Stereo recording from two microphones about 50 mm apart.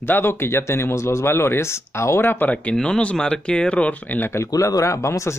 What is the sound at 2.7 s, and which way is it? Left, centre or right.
Speech, centre.